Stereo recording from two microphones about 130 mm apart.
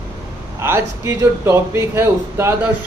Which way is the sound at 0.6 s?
20° right (ahead or behind).